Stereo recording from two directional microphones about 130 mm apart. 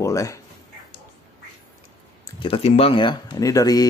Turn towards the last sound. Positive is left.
turn(degrees=30)  # may be behind; listen again after turning